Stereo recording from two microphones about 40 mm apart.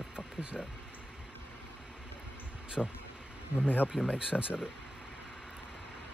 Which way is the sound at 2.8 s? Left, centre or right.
Centre.